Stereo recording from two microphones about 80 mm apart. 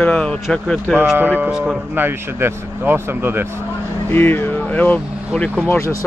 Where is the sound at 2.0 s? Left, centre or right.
Right.